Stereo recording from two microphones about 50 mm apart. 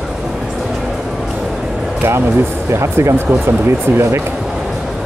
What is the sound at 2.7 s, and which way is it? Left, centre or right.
Speech, right.